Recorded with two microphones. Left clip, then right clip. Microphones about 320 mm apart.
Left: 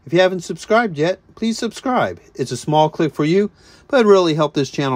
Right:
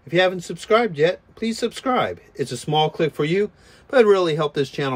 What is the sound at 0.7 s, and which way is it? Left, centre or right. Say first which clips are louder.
Speech: left 1 dB; centre.